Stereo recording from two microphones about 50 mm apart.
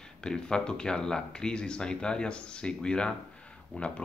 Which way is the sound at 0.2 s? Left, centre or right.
Centre.